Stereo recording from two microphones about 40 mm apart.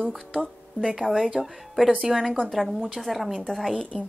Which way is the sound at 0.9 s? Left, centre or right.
Centre.